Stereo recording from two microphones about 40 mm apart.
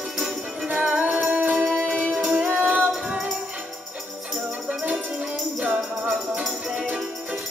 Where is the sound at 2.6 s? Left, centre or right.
Right.